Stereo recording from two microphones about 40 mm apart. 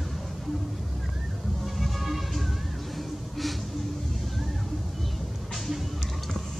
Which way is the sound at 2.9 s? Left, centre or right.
Centre.